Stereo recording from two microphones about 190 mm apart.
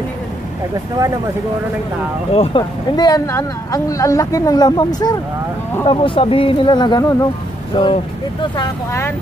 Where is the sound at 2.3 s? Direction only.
30° left (ahead or behind).